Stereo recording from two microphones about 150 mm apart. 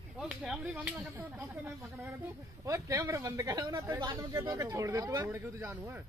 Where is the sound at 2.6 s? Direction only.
20° right (ahead or behind).